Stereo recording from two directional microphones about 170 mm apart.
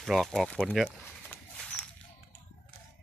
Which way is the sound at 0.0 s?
Centre (ahead or behind).